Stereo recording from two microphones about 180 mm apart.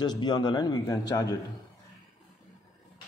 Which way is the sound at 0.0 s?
25° left (ahead or behind).